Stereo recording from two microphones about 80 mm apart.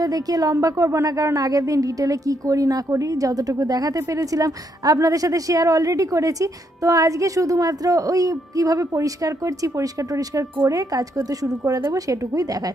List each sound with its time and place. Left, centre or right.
0.0 s a woman's voice: right